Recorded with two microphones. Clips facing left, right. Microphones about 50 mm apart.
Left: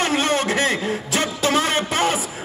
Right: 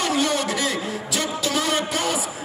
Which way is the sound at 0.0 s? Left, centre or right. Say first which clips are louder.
Left 2 dB; left.